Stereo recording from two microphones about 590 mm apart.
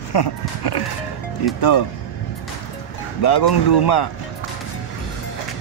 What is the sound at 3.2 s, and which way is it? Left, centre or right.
Speech, left.